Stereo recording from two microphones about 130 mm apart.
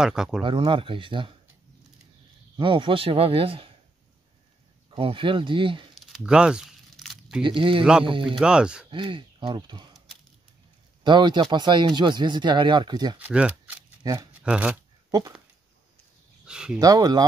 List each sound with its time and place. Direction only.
0.0 s speech: 5° right (ahead or behind)
0.4 s speech: 40° right (ahead or behind)
2.5 s speech: 40° right (ahead or behind)
4.9 s speech: 40° right (ahead or behind)
5.9 s crumpling: centre (ahead or behind)
7.4 s speech: 40° right (ahead or behind)
8.4 s speech: 5° right (ahead or behind)
8.9 s speech: 40° right (ahead or behind)
11.1 s speech: 35° right (ahead or behind)
13.2 s shuffling cards: 10° right (ahead or behind)
14.4 s speech: 5° right (ahead or behind)
15.0 s speech: 30° right (ahead or behind)
16.4 s speech: 5° right (ahead or behind)
16.8 s speech: 30° right (ahead or behind)